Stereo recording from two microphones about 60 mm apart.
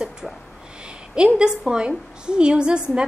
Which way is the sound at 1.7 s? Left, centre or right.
Centre.